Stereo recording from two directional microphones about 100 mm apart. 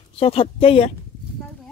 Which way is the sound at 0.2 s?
85° left.